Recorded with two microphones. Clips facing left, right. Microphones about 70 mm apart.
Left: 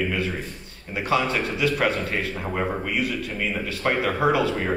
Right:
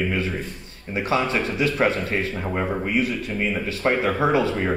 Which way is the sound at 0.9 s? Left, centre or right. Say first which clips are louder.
Right 1 dB; right.